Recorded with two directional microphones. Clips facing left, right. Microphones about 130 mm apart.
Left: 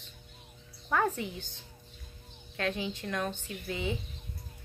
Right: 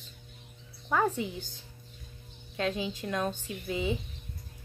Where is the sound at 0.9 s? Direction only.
15° right (ahead or behind).